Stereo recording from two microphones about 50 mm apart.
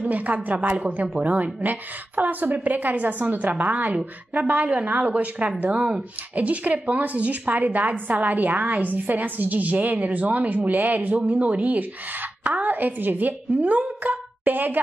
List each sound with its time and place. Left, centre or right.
0.0 s a woman's voice: right